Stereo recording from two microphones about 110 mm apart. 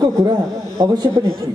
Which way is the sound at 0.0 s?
35° right (ahead or behind).